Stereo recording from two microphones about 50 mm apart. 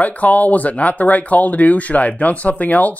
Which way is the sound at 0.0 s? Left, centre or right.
Left.